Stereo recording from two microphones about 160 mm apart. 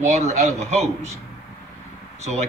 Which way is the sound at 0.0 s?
45° right (ahead or behind).